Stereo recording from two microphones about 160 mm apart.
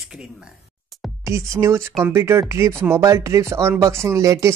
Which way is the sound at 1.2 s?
15° right (ahead or behind).